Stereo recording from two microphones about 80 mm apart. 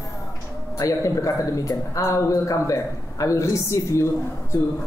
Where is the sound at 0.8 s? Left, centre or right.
Left.